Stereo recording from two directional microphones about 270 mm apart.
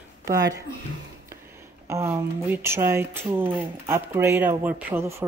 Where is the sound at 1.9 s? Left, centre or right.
Centre.